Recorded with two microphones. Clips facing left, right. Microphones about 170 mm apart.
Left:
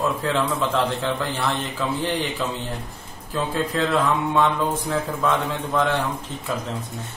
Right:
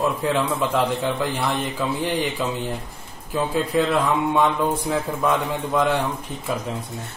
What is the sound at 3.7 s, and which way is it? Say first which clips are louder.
A man's voice: right 2 dB; 15° right (ahead or behind).